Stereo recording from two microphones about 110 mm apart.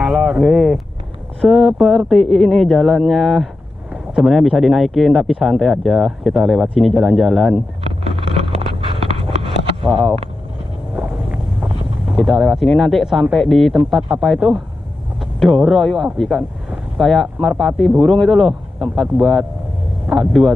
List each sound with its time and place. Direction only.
0.0 s a sound: 10° right (ahead or behind)
1.4 s speech: centre (ahead or behind)
7.8 s vehicle: 55° right (ahead or behind)
8.5 s a sound: 60° right (ahead or behind)
9.8 s speech: centre (ahead or behind)
11.6 s speech: 5° right (ahead or behind)